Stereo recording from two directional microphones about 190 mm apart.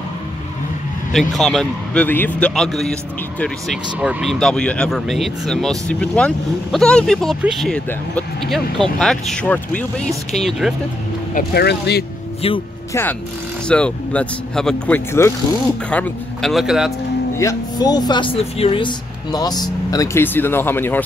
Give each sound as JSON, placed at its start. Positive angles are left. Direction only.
{"t": 1.3, "sound": "a man's voice", "side_deg": 0}
{"t": 11.3, "sound": "speech", "side_deg": 60}
{"t": 12.4, "sound": "speech", "side_deg": 30}
{"t": 13.7, "sound": "a man's voice", "side_deg": 5}
{"t": 15.2, "sound": "a man's voice", "side_deg": 15}
{"t": 17.4, "sound": "speech", "side_deg": 20}